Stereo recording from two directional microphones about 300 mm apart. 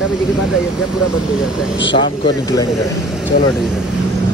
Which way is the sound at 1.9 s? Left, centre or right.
Centre.